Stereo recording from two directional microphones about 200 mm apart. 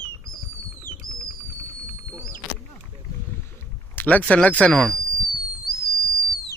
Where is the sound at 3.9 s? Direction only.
5° left (ahead or behind).